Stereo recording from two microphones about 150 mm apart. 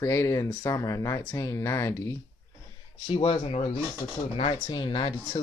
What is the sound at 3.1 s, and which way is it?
Speech, 40° left (ahead or behind).